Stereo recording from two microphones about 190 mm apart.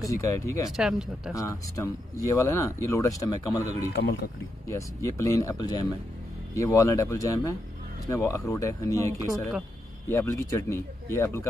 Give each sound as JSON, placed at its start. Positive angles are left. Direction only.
{"t": 0.0, "sound": "speech", "side_deg": 15}
{"t": 0.7, "sound": "speech", "side_deg": 0}
{"t": 1.3, "sound": "speech", "side_deg": 15}
{"t": 3.9, "sound": "speech", "side_deg": 60}
{"t": 4.6, "sound": "speech", "side_deg": 15}